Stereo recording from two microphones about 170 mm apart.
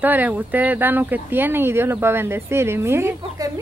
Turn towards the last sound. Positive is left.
turn(degrees=-15)  # may be behind; listen again after turning